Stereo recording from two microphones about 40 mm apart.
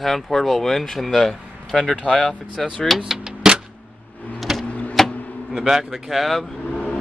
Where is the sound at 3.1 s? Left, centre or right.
Centre.